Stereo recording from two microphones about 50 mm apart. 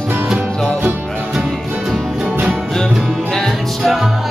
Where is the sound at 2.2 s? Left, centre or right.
Right.